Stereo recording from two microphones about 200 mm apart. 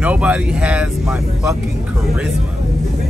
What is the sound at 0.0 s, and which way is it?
Speech, 5° right (ahead or behind).